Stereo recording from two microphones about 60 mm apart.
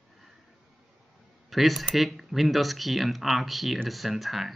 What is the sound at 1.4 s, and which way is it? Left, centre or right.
Speech, centre.